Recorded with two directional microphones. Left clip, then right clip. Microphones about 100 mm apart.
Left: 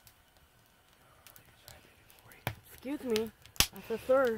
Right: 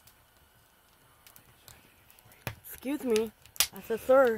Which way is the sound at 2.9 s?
90° right.